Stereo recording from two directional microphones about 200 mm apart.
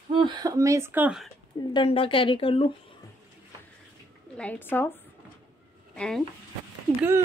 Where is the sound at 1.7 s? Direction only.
25° left (ahead or behind).